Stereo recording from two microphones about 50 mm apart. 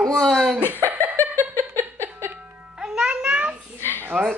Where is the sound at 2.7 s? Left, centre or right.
Centre.